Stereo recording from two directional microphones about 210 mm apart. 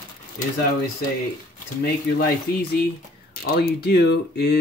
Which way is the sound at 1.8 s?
45° left (ahead or behind).